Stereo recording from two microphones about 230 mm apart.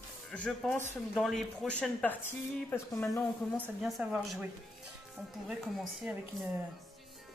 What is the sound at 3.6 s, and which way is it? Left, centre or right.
Speech, centre.